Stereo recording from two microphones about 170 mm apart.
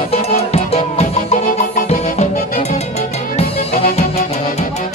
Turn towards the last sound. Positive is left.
turn(degrees=40)  # may be behind; listen again after turning